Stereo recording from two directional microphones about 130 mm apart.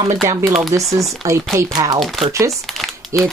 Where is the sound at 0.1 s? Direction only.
25° right (ahead or behind).